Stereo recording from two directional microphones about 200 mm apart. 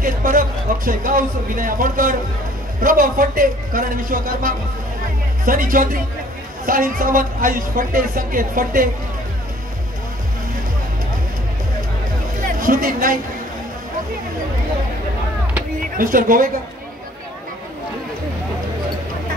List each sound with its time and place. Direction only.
0.0 s a woman's voice: 45° right (ahead or behind)
12.4 s a sound: 45° right (ahead or behind)
16.0 s a woman's voice: 45° right (ahead or behind)